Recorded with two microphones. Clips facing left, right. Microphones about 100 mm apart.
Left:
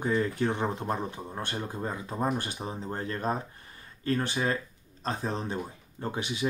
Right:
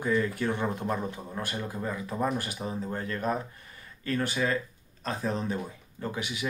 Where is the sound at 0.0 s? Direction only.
30° left (ahead or behind).